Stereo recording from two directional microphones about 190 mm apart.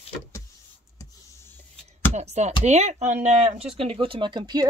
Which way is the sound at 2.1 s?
35° right (ahead or behind).